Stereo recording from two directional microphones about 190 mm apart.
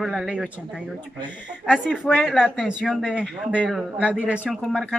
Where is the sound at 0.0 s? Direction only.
Centre (ahead or behind).